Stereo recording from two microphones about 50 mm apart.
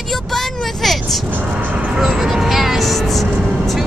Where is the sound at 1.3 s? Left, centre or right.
Right.